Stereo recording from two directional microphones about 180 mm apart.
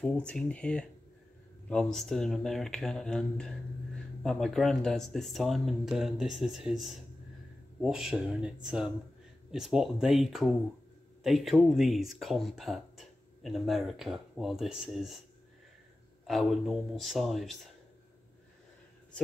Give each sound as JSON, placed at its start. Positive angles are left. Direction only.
{"t": 0.0, "sound": "speech", "side_deg": 5}
{"t": 16.3, "sound": "speech", "side_deg": 0}